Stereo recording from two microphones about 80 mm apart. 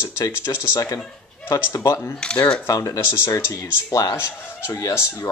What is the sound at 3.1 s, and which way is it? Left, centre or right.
Speech, left.